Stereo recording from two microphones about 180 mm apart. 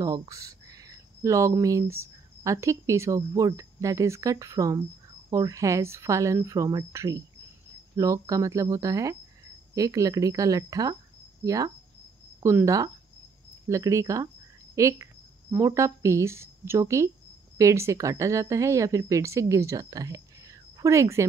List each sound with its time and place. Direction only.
0.0 s speech: 20° right (ahead or behind)